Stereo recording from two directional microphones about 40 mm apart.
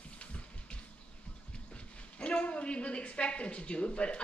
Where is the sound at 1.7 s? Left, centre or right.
Left.